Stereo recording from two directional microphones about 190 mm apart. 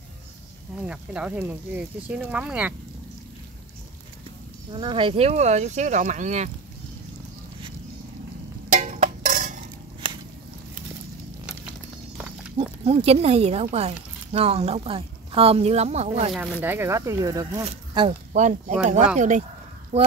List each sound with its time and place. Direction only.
0.8 s speech: 5° right (ahead or behind)
4.7 s speech: 25° right (ahead or behind)
8.7 s a sound: 40° right (ahead or behind)
10.0 s a sound: 25° right (ahead or behind)
12.5 s speech: 30° right (ahead or behind)
16.3 s speech: 10° right (ahead or behind)
17.6 s speech: 30° right (ahead or behind)